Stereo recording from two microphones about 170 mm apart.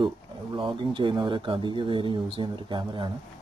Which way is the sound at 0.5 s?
30° right (ahead or behind).